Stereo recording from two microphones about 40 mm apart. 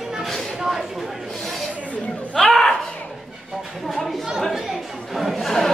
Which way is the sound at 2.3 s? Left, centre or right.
Centre.